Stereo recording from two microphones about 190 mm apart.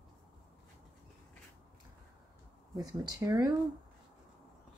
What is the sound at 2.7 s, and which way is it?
Speech, 20° right (ahead or behind).